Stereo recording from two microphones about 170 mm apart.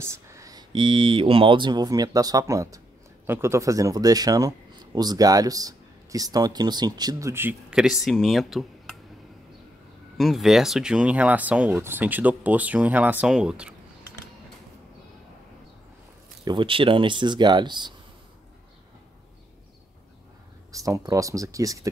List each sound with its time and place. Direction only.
0.0 s speech: 15° right (ahead or behind); by 8.9 s centre (ahead or behind)
10.1 s speech: centre (ahead or behind)
16.4 s speech: 30° right (ahead or behind)
20.7 s speech: 20° right (ahead or behind)